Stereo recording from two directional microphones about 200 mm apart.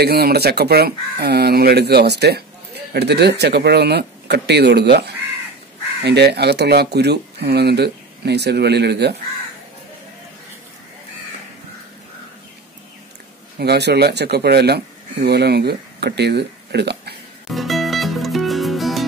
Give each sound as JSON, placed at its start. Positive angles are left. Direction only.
{"t": 0.0, "sound": "speech", "side_deg": -50}
{"t": 13.6, "sound": "speech", "side_deg": -55}
{"t": 17.5, "sound": "music", "side_deg": 0}